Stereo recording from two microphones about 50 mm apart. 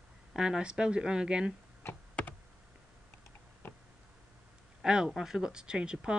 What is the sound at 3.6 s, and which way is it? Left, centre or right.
Tick, left.